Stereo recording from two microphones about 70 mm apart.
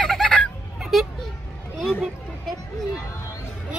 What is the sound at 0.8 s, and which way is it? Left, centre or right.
Children playing, centre.